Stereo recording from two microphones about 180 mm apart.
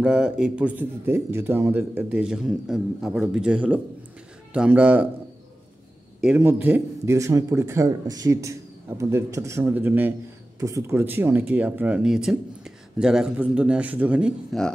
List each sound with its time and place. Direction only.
0.0 s a man's voice: 5° right (ahead or behind)
6.2 s speech: 10° right (ahead or behind)